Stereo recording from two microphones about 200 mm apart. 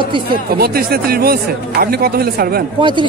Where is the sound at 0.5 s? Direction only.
50° right (ahead or behind).